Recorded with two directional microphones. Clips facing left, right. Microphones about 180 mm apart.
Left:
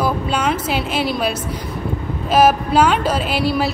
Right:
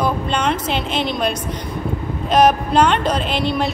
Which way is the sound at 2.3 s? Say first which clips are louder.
Even; 5° left (ahead or behind).